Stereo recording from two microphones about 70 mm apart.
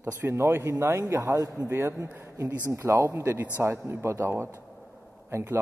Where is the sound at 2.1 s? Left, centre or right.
Right.